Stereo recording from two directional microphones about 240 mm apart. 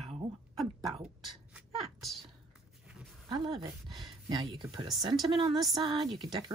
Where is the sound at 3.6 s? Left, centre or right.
Centre.